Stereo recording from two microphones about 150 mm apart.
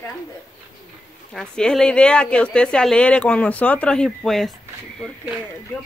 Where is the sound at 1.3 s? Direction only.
5° left (ahead or behind).